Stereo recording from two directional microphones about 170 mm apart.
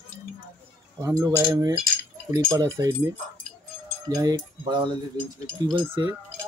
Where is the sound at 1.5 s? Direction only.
20° right (ahead or behind).